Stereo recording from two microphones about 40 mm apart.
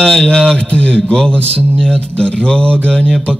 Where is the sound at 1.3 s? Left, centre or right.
Right.